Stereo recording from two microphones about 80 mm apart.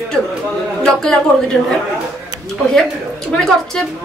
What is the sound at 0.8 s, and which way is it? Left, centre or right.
Speech, centre.